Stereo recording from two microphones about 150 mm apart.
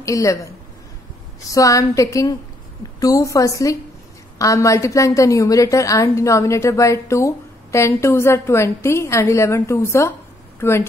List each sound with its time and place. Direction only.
0.0 s a woman's voice: 20° left (ahead or behind)
1.5 s a woman's voice: 20° left (ahead or behind)